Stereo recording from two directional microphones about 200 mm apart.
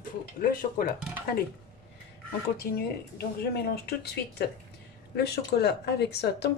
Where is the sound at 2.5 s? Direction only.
50° left (ahead or behind).